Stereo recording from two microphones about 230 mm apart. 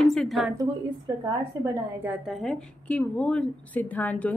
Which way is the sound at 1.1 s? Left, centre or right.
Centre.